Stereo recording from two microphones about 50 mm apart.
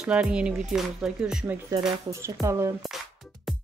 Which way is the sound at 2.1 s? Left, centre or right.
Right.